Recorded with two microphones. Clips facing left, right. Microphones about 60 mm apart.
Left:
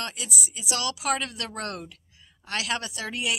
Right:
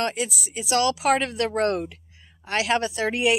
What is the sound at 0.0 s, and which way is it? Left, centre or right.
Speech, right.